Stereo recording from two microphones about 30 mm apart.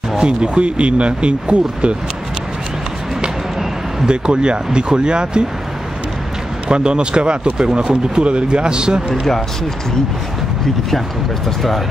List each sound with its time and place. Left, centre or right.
0.2 s speech: right
4.0 s speech: right
6.7 s speech: right